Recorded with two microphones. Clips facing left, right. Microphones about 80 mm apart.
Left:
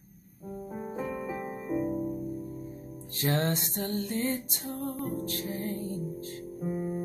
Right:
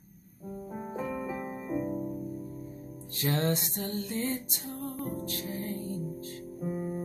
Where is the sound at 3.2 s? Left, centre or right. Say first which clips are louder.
Even; left.